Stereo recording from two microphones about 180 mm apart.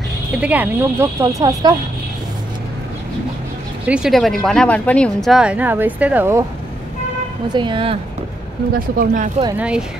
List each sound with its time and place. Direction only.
0.4 s speech: 10° right (ahead or behind)
3.8 s speech: 5° right (ahead or behind)
7.5 s a woman's voice: 25° right (ahead or behind)
8.7 s speech: 50° right (ahead or behind)
9.6 s speech: 5° right (ahead or behind)